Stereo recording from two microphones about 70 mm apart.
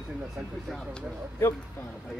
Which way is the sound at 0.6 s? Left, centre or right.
Centre.